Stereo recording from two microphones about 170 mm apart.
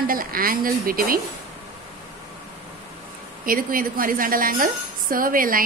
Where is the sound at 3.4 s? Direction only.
55° right (ahead or behind).